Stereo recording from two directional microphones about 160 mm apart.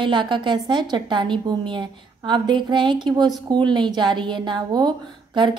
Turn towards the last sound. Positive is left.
turn(degrees=-25)  # may be behind; listen again after turning